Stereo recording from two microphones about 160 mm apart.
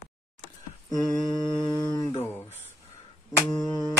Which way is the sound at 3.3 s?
25° left (ahead or behind).